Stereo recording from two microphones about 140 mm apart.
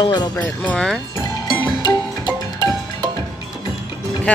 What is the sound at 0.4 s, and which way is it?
Speech, 5° left (ahead or behind).